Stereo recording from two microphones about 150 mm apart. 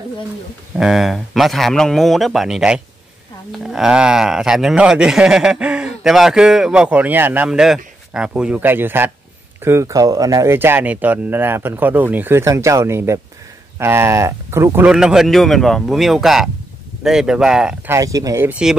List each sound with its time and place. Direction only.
0.7 s speech: 5° right (ahead or behind)
14.9 s speech: 5° right (ahead or behind)
17.8 s speech: 20° right (ahead or behind)